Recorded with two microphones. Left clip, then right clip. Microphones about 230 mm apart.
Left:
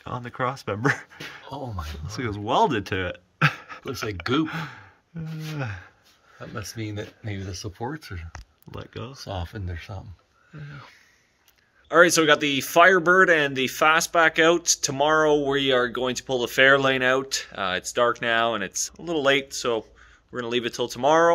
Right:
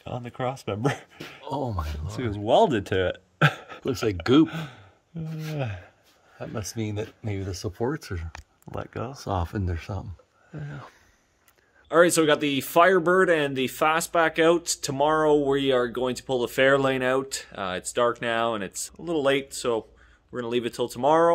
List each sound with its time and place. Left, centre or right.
0.4 s speech: centre
1.4 s a sound: right
2.1 s speech: centre
3.8 s speech: right
4.5 s speech: centre
6.5 s speech: right
8.7 s speech: centre
9.2 s speech: right
10.5 s speech: centre
11.9 s speech: centre